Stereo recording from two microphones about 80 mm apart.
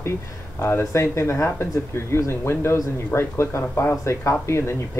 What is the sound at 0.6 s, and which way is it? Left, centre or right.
Speech, left.